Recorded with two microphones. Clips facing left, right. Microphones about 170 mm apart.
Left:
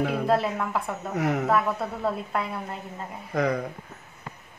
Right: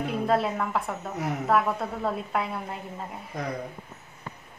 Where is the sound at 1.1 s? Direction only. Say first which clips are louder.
Left 7 dB; 80° left.